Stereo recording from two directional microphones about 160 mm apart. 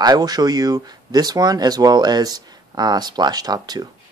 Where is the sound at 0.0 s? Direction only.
25° right (ahead or behind).